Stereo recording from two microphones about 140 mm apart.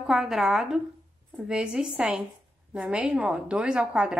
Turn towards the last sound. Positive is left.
turn(degrees=-5)  # may be behind; listen again after turning